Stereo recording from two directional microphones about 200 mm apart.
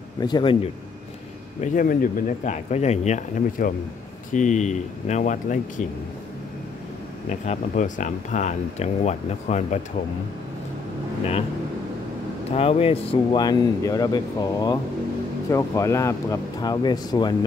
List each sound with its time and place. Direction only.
0.2 s speech: 25° left (ahead or behind)
1.6 s speech: 40° left (ahead or behind)
7.2 s speech: 40° left (ahead or behind)
12.4 s speech: 30° left (ahead or behind)